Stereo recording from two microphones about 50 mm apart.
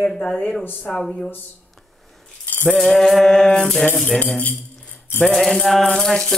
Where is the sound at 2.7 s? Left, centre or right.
Centre.